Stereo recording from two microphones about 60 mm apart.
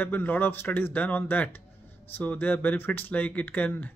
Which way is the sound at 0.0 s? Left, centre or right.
Left.